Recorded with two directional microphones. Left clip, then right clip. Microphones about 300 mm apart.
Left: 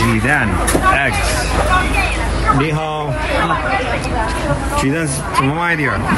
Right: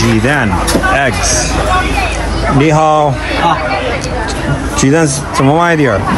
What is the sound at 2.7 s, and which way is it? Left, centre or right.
Speech, centre.